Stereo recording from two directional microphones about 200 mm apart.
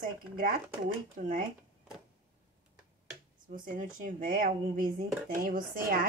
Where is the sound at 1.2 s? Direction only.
35° right (ahead or behind).